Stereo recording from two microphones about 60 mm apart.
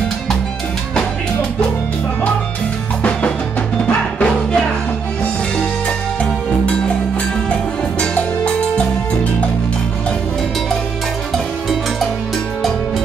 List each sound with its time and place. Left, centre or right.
3.0 s drum: left
3.8 s music: centre
8.0 s music: centre